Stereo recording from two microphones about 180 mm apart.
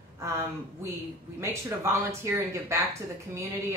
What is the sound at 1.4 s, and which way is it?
Speech, 15° right (ahead or behind).